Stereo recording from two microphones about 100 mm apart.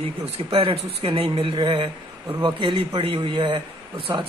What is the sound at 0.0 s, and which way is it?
Speech, 65° right (ahead or behind).